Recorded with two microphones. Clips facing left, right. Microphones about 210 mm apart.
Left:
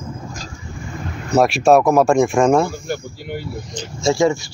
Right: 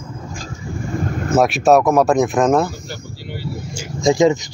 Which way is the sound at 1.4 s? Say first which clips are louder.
Left 1 dB; centre (ahead or behind).